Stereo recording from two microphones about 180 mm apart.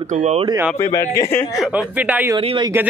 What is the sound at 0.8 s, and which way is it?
Speech, 15° left (ahead or behind).